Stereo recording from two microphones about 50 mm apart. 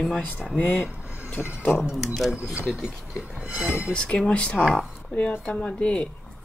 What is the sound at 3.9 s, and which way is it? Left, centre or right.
Speech, left.